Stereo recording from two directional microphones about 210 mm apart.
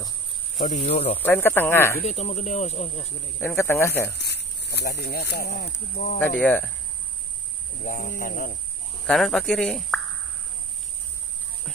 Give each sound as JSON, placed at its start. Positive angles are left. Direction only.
{"t": 0.6, "sound": "speech", "side_deg": 35}
{"t": 1.1, "sound": "speech", "side_deg": 10}
{"t": 2.0, "sound": "speech", "side_deg": 30}
{"t": 3.3, "sound": "speech", "side_deg": 10}
{"t": 4.2, "sound": "speech", "side_deg": 50}
{"t": 6.1, "sound": "speech", "side_deg": 5}
{"t": 7.8, "sound": "speech", "side_deg": 40}
{"t": 9.0, "sound": "speech", "side_deg": 0}